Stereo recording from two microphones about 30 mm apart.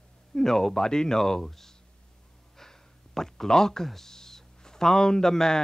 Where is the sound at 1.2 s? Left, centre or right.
Centre.